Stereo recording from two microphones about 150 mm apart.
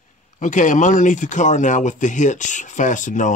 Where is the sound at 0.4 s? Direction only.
55° left (ahead or behind).